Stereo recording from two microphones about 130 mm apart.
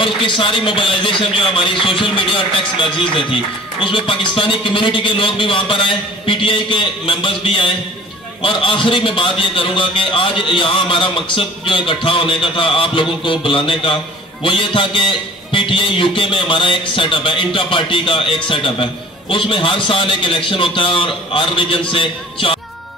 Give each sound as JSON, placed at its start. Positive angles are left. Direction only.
{"t": 0.0, "sound": "a man's voice", "side_deg": 40}